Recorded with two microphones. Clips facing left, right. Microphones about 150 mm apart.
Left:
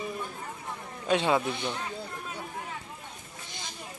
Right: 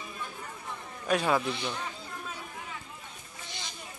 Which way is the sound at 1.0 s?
25° left (ahead or behind).